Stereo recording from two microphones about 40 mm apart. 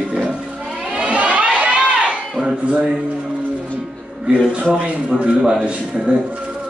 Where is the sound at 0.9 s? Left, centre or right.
Right.